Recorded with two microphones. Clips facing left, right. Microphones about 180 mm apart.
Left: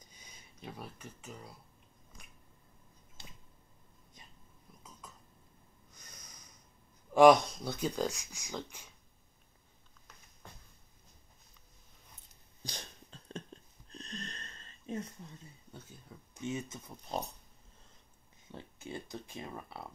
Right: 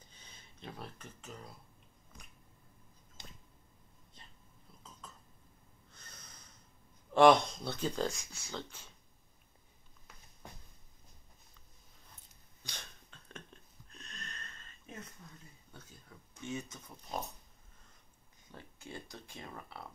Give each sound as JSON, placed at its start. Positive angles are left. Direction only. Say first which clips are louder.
{"t": 0.0, "sound": "a sound", "louder": "left 1 dB", "side_deg": 10}
{"t": 5.9, "sound": "snort", "louder": "even", "side_deg": 15}
{"t": 7.2, "sound": "speech", "louder": "left 2 dB", "side_deg": 10}
{"t": 12.6, "sound": "a sound", "louder": "left 5 dB", "side_deg": 35}
{"t": 15.7, "sound": "speech", "louder": "left 4 dB", "side_deg": 20}
{"t": 18.5, "sound": "speech", "louder": "left 4 dB", "side_deg": 20}